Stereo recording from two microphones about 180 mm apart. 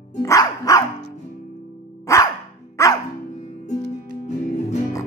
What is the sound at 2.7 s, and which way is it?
Music, 15° left (ahead or behind).